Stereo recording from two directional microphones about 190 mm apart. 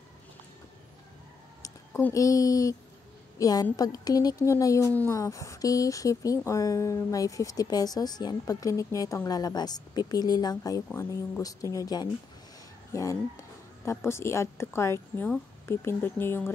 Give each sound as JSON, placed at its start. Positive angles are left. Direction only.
{"t": 1.6, "sound": "a woman's voice", "side_deg": 15}